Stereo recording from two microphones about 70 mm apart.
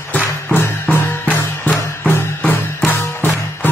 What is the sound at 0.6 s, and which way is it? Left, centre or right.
Music, left.